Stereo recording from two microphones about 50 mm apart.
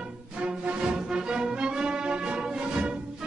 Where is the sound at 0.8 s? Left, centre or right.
Centre.